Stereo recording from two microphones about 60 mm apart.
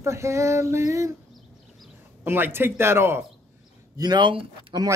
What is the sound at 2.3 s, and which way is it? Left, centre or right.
Speech, right.